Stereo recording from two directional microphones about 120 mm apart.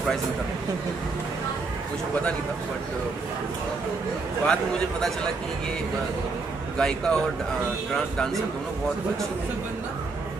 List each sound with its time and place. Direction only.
4.5 s a man's voice: 5° left (ahead or behind)
6.8 s a man's voice: 5° left (ahead or behind)